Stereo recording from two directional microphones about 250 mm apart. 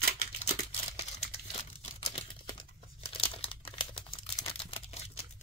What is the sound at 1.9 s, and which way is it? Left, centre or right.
Crumpling, left.